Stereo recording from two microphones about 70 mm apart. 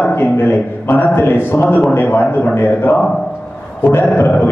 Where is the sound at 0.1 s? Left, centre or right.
Left.